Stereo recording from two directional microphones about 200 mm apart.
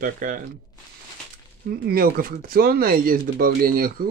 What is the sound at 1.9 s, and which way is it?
Speech, 45° right (ahead or behind).